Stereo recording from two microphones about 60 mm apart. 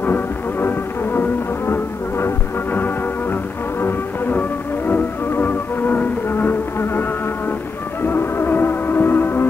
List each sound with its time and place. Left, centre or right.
0.0 s music: left
4.3 s music: left